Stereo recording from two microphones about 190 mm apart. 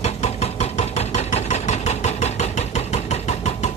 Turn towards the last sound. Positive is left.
turn(degrees=35)  # may be behind; listen again after turning